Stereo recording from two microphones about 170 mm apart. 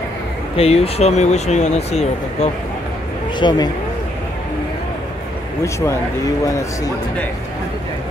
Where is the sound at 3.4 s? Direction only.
25° left (ahead or behind).